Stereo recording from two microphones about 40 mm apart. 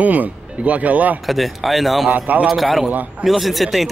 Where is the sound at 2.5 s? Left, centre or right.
Centre.